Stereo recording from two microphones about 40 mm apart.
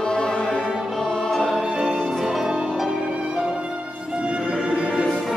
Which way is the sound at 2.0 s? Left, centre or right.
Centre.